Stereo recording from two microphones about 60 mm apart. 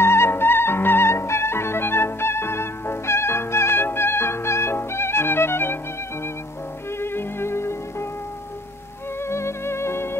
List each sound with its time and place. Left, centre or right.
0.0 s music: left
7.0 s music: left
9.2 s music: left